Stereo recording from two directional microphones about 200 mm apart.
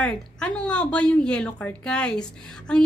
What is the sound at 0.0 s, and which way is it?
A woman's voice, 5° left (ahead or behind).